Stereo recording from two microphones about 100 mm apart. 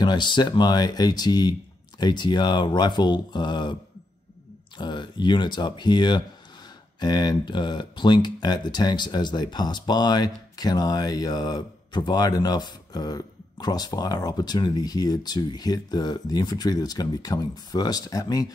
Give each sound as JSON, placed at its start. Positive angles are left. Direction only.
{"t": 0.0, "sound": "speech", "side_deg": 50}
{"t": 4.7, "sound": "speech", "side_deg": 50}